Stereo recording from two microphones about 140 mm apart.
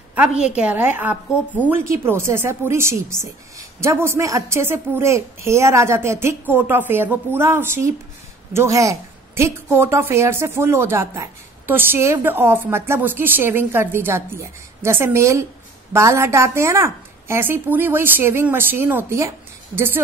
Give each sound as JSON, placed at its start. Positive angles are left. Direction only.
{"t": 0.4, "sound": "a woman's voice", "side_deg": -5}